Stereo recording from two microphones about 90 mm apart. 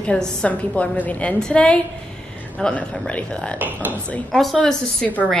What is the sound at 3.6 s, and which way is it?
Speech, 20° right (ahead or behind).